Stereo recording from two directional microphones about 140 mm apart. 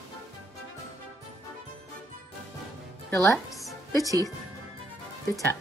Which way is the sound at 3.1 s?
20° left (ahead or behind).